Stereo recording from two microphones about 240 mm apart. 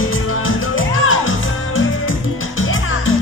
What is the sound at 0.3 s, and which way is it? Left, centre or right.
Music, left.